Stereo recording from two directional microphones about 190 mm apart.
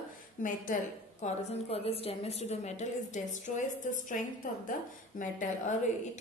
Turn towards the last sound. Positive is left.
turn(degrees=45)  # may be behind; listen again after turning